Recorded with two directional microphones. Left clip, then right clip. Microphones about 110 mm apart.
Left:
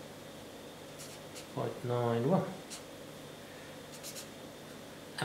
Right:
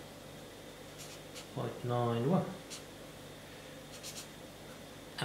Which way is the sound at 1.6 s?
35° left (ahead or behind).